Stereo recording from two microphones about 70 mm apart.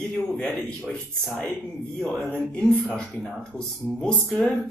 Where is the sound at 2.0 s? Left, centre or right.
Centre.